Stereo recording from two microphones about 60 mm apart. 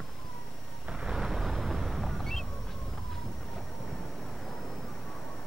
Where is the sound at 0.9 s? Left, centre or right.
Centre.